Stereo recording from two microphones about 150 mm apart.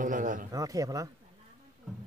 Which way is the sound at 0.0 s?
60° right (ahead or behind).